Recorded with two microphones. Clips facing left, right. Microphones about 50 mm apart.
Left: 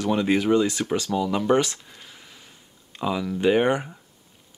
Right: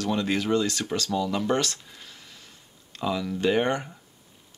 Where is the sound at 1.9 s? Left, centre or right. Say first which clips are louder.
Left 1 dB; centre.